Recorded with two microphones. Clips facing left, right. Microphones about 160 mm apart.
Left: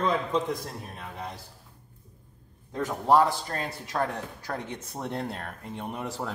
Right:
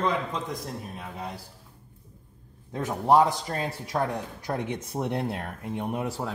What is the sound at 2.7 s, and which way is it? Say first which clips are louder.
A man's voice: right 1 dB; 20° right (ahead or behind).